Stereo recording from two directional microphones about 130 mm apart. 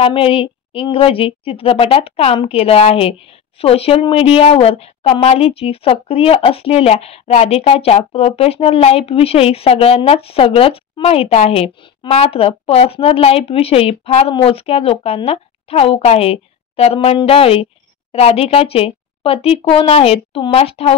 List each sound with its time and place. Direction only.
0.0 s a woman's voice: 45° left (ahead or behind)